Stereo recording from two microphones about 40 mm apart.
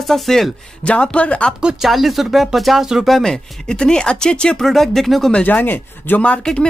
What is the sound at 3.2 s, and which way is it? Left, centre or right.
Speech, centre.